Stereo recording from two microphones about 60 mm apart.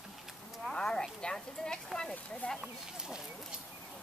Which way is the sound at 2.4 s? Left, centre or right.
Left.